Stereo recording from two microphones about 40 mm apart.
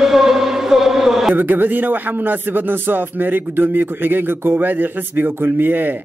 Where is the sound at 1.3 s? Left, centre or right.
Right.